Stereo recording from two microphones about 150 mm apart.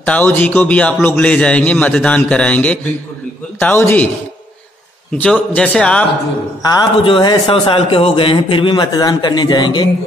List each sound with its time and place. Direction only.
0.0 s a man's voice: 10° left (ahead or behind)
5.1 s a man's voice: 10° left (ahead or behind)
6.6 s a man's voice: 25° left (ahead or behind)